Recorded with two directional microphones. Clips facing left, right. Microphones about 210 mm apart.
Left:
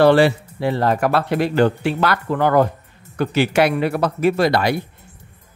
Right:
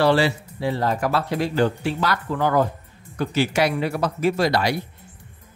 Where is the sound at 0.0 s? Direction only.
55° left (ahead or behind).